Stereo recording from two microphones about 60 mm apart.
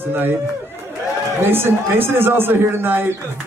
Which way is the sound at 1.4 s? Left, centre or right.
Right.